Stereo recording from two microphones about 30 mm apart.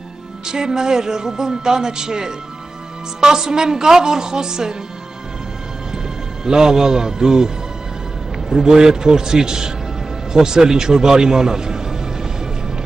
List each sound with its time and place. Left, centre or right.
0.5 s a man's voice: right
6.4 s a man's voice: right
8.6 s a man's voice: right